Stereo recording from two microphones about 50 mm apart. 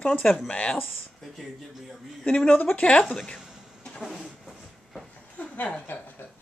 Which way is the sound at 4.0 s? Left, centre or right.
Centre.